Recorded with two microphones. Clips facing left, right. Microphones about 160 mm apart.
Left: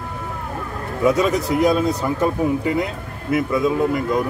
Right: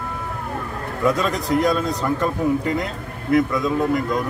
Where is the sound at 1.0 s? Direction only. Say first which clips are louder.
Left 3 dB; 10° left (ahead or behind).